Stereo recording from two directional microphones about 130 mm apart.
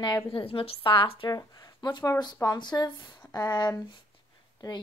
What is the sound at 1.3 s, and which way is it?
A woman's voice, 30° left (ahead or behind).